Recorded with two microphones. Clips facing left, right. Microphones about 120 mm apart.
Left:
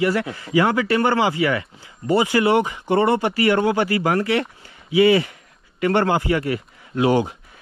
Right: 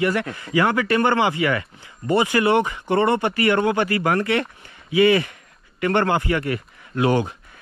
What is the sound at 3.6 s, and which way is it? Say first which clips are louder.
Speech: left 1 dB; 30° left (ahead or behind).